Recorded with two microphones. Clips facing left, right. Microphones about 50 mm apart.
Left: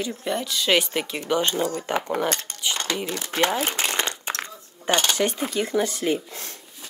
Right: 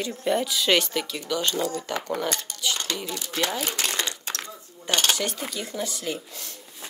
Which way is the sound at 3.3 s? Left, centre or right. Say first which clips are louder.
Left 5 dB; left.